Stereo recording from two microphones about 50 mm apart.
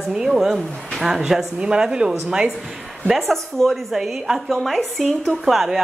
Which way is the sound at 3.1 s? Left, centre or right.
Centre.